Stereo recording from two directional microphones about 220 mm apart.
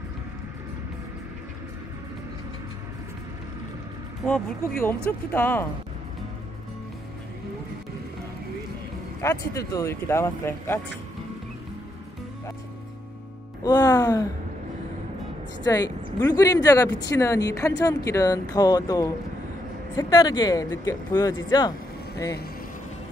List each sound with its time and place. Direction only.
4.3 s speech: 10° left (ahead or behind)
9.2 s speech: 15° left (ahead or behind)
13.6 s speech: 15° left (ahead or behind)
15.6 s speech: 15° left (ahead or behind)